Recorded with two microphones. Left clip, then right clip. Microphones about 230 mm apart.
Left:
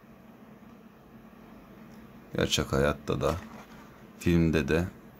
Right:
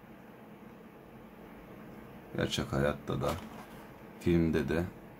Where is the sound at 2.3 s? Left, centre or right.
Left.